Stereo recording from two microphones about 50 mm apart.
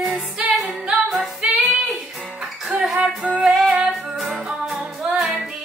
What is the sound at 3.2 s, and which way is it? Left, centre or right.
Music, right.